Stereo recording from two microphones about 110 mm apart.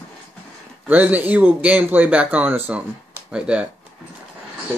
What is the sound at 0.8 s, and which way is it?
Speech, 15° right (ahead or behind).